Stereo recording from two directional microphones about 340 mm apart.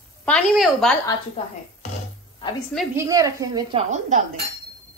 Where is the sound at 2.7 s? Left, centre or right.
Centre.